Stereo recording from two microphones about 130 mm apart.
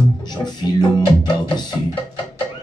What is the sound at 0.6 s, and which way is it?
Music, 35° left (ahead or behind).